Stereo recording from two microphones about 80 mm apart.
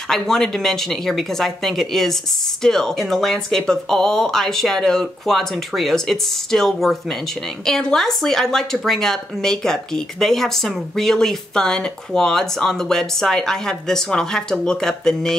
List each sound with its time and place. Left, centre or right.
0.1 s a woman's voice: centre